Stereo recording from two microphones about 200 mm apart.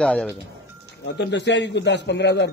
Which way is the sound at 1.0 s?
60° left (ahead or behind).